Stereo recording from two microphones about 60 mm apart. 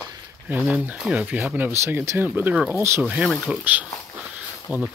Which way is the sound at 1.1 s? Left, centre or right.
Right.